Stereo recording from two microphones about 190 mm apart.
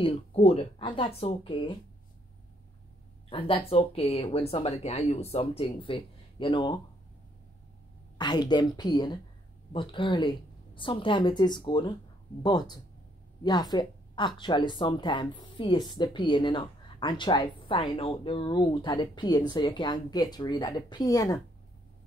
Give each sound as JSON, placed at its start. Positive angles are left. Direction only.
{"t": 0.0, "sound": "speech", "side_deg": 30}
{"t": 3.3, "sound": "speech", "side_deg": 30}
{"t": 8.2, "sound": "speech", "side_deg": 25}